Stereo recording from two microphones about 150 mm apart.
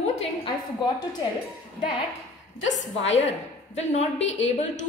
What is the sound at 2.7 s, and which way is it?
A woman's voice, 50° left (ahead or behind).